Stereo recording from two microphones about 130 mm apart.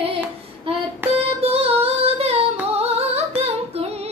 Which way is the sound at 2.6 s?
55° right (ahead or behind).